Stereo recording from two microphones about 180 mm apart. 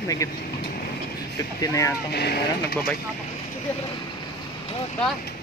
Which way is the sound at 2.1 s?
65° left (ahead or behind).